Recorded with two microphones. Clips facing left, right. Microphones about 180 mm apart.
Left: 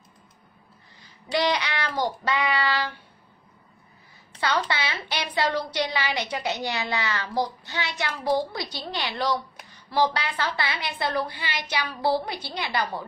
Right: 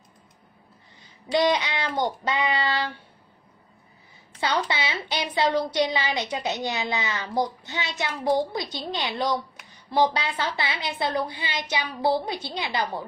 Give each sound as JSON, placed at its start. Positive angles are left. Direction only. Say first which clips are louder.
{"t": 1.0, "sound": "child singing", "louder": "right 3 dB", "side_deg": -20}
{"t": 4.4, "sound": "a woman's voice", "louder": "even", "side_deg": -20}